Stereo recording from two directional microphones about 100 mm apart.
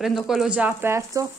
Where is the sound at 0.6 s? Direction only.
25° right (ahead or behind).